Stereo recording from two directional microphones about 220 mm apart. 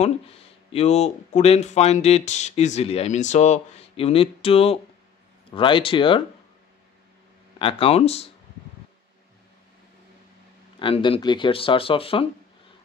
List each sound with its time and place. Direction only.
0.0 s speech: 30° left (ahead or behind)
7.5 s speech: 25° left (ahead or behind)
10.8 s speech: 25° left (ahead or behind)